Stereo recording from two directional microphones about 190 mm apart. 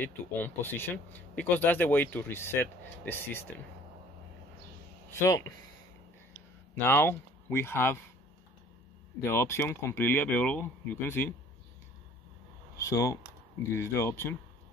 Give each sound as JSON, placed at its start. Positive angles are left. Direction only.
{"t": 0.0, "sound": "speech", "side_deg": 10}
{"t": 6.7, "sound": "speech", "side_deg": 10}
{"t": 9.2, "sound": "speech", "side_deg": 15}
{"t": 12.7, "sound": "speech", "side_deg": 15}